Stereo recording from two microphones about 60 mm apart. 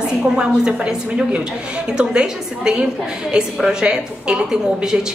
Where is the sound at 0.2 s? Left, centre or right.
Centre.